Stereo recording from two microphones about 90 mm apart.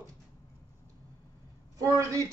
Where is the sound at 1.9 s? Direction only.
35° right (ahead or behind).